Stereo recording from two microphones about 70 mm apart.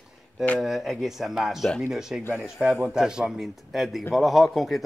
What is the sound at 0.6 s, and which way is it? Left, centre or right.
A man's voice, centre.